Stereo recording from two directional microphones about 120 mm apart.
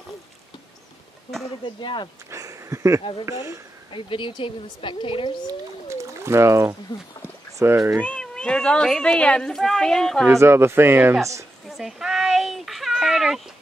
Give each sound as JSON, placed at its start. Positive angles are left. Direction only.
{"t": 1.8, "sound": "speech", "side_deg": 40}
{"t": 2.3, "sound": "a sound", "side_deg": -25}
{"t": 3.0, "sound": "speech", "side_deg": 45}
{"t": 5.9, "sound": "bird", "side_deg": -25}
{"t": 7.5, "sound": "speech", "side_deg": -25}
{"t": 8.0, "sound": "speech", "side_deg": 10}
{"t": 10.2, "sound": "speech", "side_deg": -20}
{"t": 11.7, "sound": "a sound", "side_deg": -5}